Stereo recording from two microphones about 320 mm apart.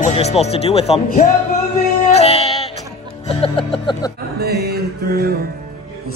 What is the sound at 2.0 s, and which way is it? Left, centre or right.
Music, centre.